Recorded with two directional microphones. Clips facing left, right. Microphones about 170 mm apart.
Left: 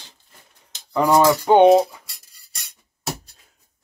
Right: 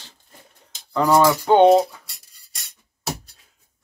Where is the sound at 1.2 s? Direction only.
10° left (ahead or behind).